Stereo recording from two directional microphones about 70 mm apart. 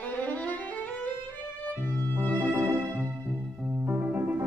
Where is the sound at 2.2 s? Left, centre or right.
Left.